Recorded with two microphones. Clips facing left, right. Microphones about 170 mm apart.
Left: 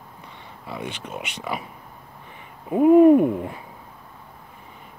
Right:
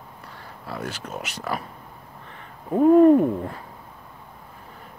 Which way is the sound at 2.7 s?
10° left (ahead or behind).